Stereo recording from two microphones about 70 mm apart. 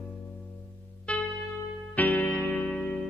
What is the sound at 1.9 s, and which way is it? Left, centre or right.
Music, left.